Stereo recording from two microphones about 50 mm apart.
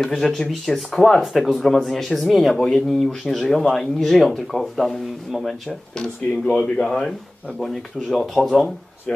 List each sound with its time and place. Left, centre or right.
0.1 s speech: centre
5.9 s speech: centre
7.6 s speech: centre